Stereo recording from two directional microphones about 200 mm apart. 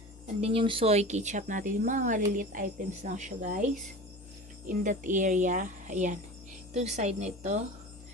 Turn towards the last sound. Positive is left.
turn(degrees=-35)  # may be behind; listen again after turning